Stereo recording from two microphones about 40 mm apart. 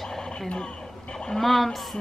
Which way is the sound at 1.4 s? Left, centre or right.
Centre.